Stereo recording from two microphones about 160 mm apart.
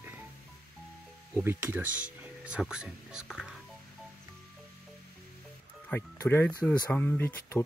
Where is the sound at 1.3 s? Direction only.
15° right (ahead or behind).